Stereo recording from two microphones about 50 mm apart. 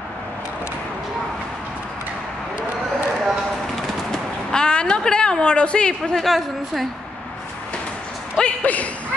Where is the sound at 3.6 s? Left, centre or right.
Centre.